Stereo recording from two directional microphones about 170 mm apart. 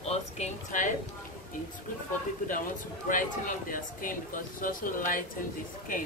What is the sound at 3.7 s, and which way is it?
Speech, 55° left (ahead or behind).